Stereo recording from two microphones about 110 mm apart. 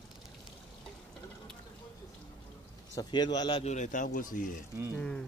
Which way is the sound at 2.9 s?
40° left (ahead or behind).